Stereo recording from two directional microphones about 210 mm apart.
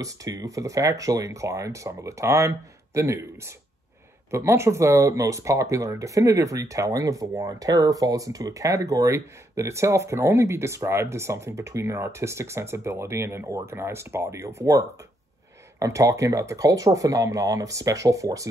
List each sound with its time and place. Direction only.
0.0 s speech: 15° right (ahead or behind)